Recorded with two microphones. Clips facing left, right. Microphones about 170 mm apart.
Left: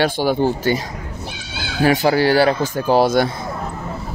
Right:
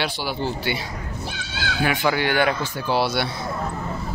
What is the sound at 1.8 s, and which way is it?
Speech, 35° left (ahead or behind).